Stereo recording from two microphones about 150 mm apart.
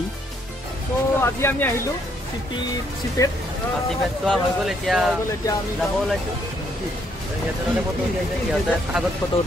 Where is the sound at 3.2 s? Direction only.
20° left (ahead or behind).